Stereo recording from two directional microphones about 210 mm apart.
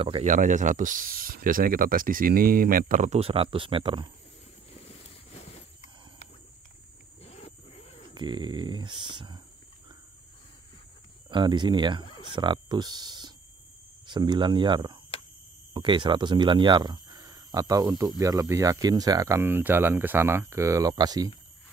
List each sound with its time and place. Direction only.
0.0 s speech: 25° right (ahead or behind)
0.3 s speech: 35° right (ahead or behind)
7.2 s wild animals: 30° left (ahead or behind)
8.1 s speech: 20° right (ahead or behind)
11.2 s speech: 20° right (ahead or behind)